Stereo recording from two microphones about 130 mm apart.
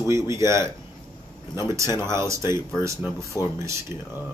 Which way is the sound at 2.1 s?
20° right (ahead or behind).